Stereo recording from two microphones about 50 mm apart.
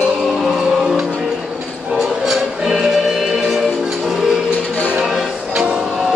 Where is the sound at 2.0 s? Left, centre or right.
Centre.